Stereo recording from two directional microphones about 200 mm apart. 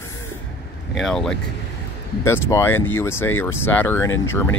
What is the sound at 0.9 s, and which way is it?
Speech, centre (ahead or behind).